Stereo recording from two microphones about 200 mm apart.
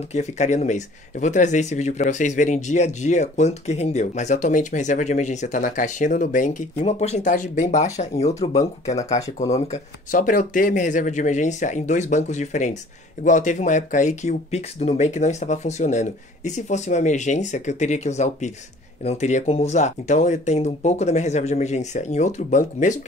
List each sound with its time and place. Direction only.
0.1 s speech: 35° left (ahead or behind)